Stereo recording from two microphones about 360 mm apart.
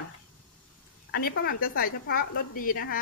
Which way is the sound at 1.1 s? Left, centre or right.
Left.